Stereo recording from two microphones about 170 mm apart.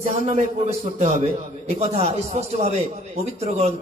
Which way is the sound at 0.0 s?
40° right (ahead or behind).